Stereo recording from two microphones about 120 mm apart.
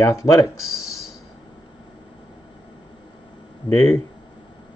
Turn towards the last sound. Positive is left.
turn(degrees=25)  # may be behind; listen again after turning